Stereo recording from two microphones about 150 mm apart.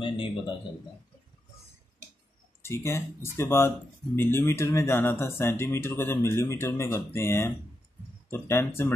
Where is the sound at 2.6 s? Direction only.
20° left (ahead or behind).